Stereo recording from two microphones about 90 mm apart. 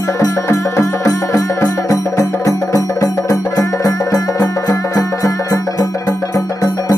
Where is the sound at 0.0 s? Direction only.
40° left (ahead or behind).